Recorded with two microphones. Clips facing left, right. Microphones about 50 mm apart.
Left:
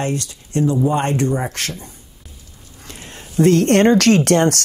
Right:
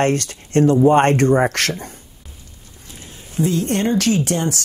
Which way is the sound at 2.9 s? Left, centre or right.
Left.